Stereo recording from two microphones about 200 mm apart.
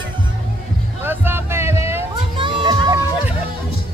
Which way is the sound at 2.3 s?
25° right (ahead or behind).